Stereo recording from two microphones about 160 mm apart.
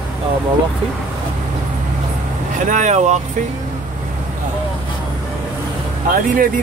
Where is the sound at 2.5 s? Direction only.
50° right (ahead or behind).